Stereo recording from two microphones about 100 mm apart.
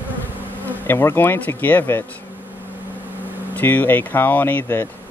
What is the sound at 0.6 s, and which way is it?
Bee, 20° left (ahead or behind).